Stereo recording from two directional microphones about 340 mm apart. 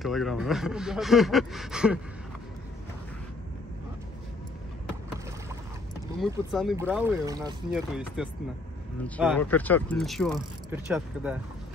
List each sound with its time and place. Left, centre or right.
0.0 s speech: centre
6.5 s speech: centre